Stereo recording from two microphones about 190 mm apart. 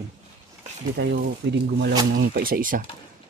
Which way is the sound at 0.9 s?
65° right (ahead or behind).